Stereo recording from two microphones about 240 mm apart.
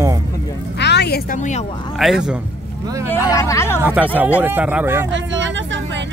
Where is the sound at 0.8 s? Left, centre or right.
Left.